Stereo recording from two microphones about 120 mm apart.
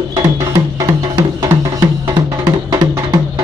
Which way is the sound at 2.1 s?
40° right (ahead or behind).